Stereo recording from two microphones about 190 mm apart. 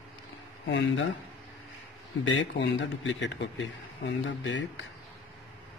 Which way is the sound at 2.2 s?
85° left.